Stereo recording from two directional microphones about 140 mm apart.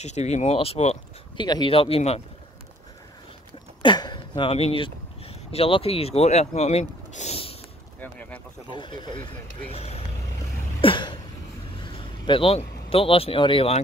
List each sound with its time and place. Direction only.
0.0 s speech: 55° left (ahead or behind)
1.3 s speech: 35° left (ahead or behind)
3.8 s speech: 35° left (ahead or behind)
8.0 s speech: 10° left (ahead or behind)
8.6 s speech: 35° left (ahead or behind)
9.7 s speech: 45° left (ahead or behind)
10.8 s cough: 35° left (ahead or behind)
11.8 s speech: 35° left (ahead or behind)